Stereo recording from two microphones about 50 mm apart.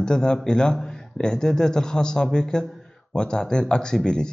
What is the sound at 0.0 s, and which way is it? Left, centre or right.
Speech, centre.